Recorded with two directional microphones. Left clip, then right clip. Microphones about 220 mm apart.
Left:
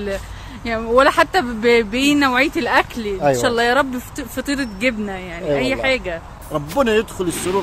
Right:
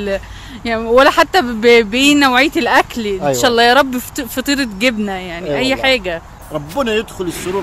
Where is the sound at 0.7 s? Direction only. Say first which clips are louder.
Right 4 dB; 40° right (ahead or behind).